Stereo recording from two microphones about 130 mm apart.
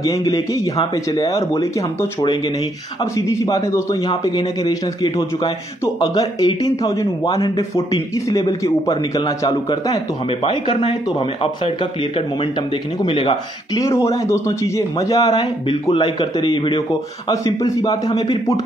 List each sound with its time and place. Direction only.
0.0 s a man's voice: 25° left (ahead or behind)
10.4 s a man's voice: 40° left (ahead or behind)
13.0 s speech: 40° left (ahead or behind)
13.7 s a man's voice: 25° left (ahead or behind)
17.3 s a man's voice: 25° left (ahead or behind)